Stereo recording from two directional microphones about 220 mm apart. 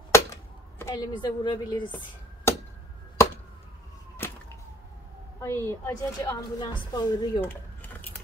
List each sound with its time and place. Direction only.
0.1 s a sound: 10° left (ahead or behind)
4.2 s whip: 10° left (ahead or behind)
5.4 s a woman's voice: 10° left (ahead or behind)